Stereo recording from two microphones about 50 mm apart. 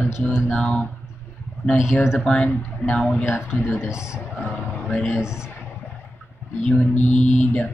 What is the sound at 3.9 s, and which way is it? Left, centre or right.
Speech, centre.